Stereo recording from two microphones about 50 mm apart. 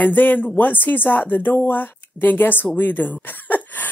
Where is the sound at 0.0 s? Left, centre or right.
Left.